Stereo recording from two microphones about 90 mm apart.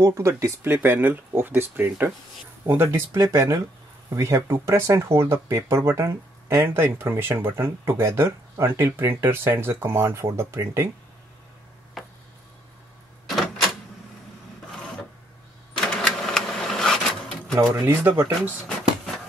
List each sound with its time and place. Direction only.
0.0 s speech: 35° right (ahead or behind)
12.0 s a sound: centre (ahead or behind)
13.3 s typewriter: centre (ahead or behind)
15.8 s sewing machine: 5° left (ahead or behind)
17.7 s speech: 20° right (ahead or behind)